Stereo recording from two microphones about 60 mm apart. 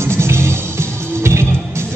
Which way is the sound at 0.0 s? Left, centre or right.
Right.